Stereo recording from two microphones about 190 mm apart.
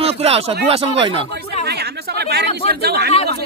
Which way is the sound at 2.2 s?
60° right (ahead or behind).